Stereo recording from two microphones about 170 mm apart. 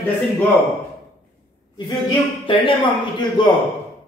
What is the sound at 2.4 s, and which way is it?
Speech, 30° left (ahead or behind).